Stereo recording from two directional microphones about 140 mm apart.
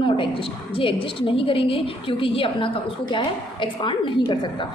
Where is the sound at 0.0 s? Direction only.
40° left (ahead or behind).